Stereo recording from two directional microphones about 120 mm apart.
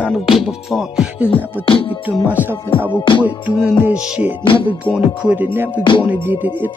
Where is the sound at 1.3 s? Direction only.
50° left (ahead or behind).